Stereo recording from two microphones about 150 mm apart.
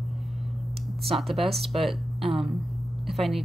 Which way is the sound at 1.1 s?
Centre (ahead or behind).